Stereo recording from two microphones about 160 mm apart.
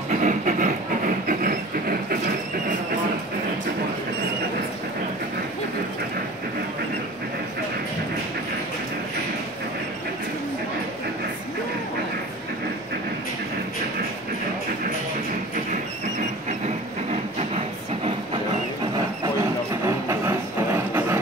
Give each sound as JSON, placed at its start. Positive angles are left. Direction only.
{"t": 0.1, "sound": "train", "side_deg": -50}
{"t": 16.6, "sound": "train", "side_deg": -45}
{"t": 20.1, "sound": "train", "side_deg": -15}